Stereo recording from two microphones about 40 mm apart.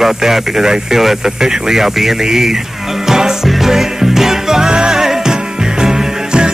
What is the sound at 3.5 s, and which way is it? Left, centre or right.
Music, centre.